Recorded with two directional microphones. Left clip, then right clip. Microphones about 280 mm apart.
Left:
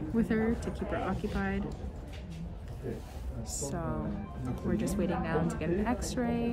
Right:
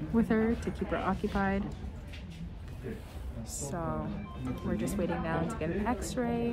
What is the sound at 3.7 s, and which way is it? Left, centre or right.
A woman's voice, centre.